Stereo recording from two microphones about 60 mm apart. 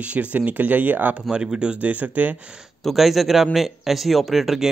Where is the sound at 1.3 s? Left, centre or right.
Centre.